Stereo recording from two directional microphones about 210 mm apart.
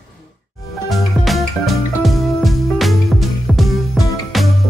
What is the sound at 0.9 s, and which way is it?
Music, centre (ahead or behind).